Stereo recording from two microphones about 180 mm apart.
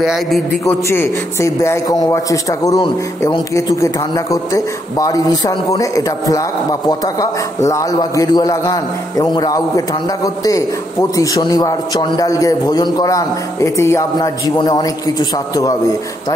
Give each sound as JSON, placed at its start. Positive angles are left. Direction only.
{"t": 0.0, "sound": "a man's voice", "side_deg": 0}
{"t": 0.7, "sound": "a man's voice", "side_deg": 15}